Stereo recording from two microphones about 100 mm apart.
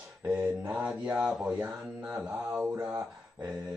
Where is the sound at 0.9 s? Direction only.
5° right (ahead or behind).